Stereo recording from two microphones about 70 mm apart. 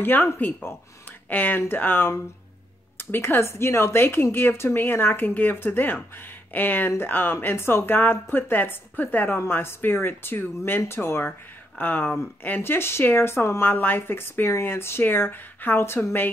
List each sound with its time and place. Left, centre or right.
0.0 s a woman's voice: left
11.8 s a woman's voice: left